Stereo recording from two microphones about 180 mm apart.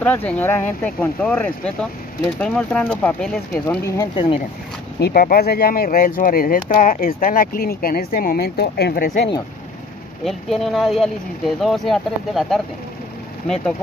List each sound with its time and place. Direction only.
0.0 s speech: 10° left (ahead or behind); by 4.4 s 25° left (ahead or behind)
5.0 s speech: 55° left (ahead or behind)
10.2 s speech: centre (ahead or behind)